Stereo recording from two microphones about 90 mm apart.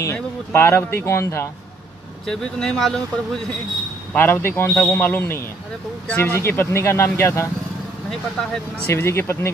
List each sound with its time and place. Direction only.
0.0 s speech: 30° left (ahead or behind)
2.2 s speech: 5° left (ahead or behind)
4.1 s a man's voice: 20° left (ahead or behind)
8.9 s a man's voice: 30° left (ahead or behind)